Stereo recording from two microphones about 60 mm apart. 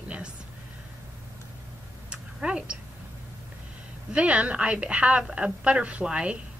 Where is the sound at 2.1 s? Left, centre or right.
Centre.